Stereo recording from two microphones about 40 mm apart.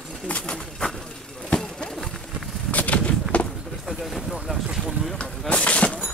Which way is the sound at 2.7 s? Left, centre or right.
Left.